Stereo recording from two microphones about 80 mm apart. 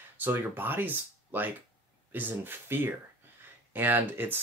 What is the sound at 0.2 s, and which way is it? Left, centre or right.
Speech, right.